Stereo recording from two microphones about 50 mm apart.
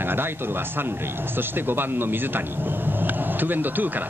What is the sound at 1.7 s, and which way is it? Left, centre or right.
Speech, right.